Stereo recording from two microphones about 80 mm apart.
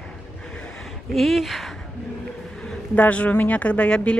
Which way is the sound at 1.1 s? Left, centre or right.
Centre.